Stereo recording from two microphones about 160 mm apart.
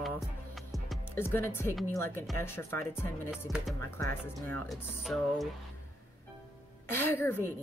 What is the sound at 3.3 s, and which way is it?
Speech, 5° right (ahead or behind).